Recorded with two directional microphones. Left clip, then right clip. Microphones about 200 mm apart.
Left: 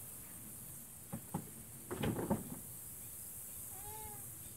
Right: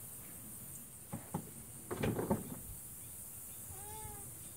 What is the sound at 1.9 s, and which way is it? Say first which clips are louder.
Cupboard open or close: right 2 dB; 30° right (ahead or behind).